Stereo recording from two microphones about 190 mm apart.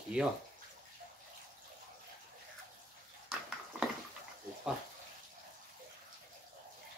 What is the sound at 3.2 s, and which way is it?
Dog, 5° right (ahead or behind).